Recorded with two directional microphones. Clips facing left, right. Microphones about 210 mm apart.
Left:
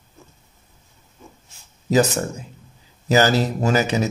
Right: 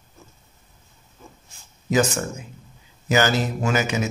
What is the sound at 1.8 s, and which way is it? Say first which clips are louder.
A man's voice: left 3 dB; 35° left (ahead or behind).